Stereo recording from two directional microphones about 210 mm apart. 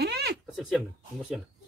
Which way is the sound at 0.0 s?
50° right (ahead or behind).